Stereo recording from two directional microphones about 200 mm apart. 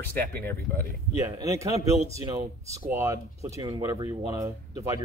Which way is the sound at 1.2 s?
15° right (ahead or behind).